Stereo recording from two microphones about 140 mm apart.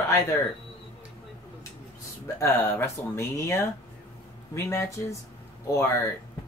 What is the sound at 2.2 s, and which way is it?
Speech, 20° left (ahead or behind).